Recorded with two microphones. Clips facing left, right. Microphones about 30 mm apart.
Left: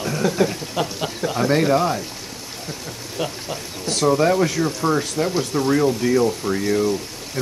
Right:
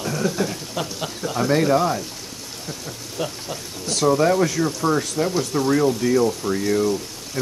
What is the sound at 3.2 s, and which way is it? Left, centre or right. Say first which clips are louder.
Speech: left 1 dB; centre.